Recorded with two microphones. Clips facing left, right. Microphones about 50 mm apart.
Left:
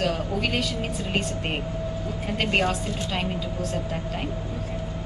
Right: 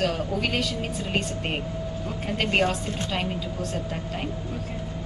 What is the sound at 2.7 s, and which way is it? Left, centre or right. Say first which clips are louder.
Speech: even; centre.